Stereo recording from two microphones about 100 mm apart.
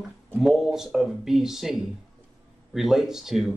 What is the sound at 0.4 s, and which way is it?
Speech, 5° right (ahead or behind).